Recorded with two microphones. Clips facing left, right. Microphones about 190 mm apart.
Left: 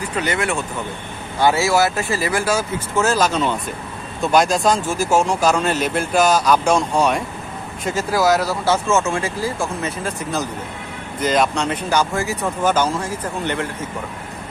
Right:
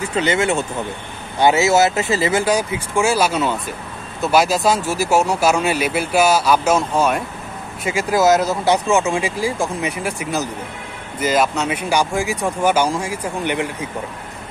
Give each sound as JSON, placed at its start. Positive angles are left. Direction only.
{"t": 0.0, "sound": "speech", "side_deg": -25}